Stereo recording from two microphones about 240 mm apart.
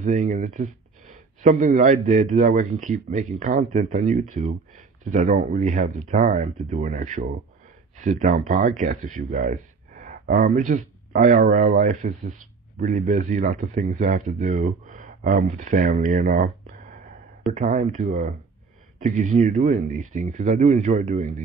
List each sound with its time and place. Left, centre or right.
0.0 s speech: right